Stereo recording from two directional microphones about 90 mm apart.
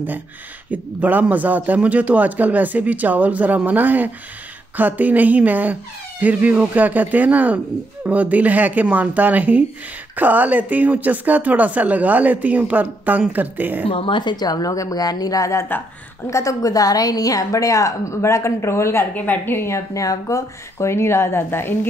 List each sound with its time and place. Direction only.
0.7 s speech: 20° right (ahead or behind)
13.8 s a woman's voice: 70° left (ahead or behind); by 19.0 s 30° left (ahead or behind)
19.1 s a woman's voice: 20° left (ahead or behind)